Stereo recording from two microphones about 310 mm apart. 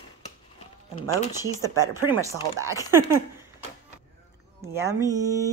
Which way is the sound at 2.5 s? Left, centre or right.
Centre.